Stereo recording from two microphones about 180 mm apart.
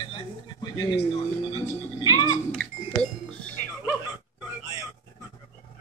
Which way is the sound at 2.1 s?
20° left (ahead or behind).